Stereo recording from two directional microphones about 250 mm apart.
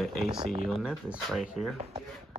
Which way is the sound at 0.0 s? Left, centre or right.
Centre.